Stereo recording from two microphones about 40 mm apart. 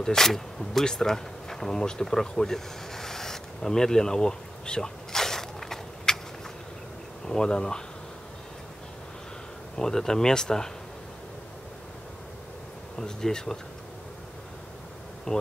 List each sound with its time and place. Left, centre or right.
0.0 s speech: centre
0.8 s insect: centre
7.2 s speech: centre
9.8 s speech: centre
13.0 s speech: centre
15.3 s speech: left